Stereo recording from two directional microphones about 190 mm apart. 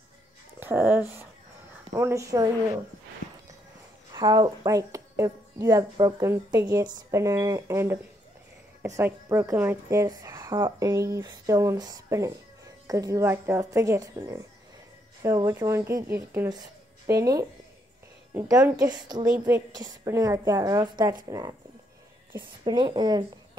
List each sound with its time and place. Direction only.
0.6 s a woman's voice: 10° right (ahead or behind)
4.1 s a woman's voice: 20° right (ahead or behind)